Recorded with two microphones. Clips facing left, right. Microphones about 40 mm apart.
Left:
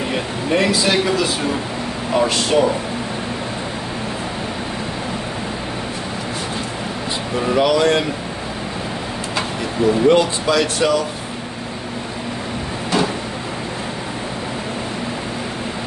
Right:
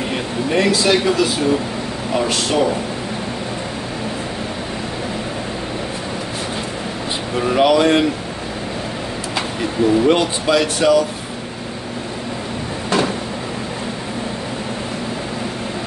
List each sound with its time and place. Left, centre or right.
0.1 s a man's voice: centre
2.1 s a man's voice: centre
7.5 s speech: centre
10.0 s speech: centre
10.6 s a man's voice: centre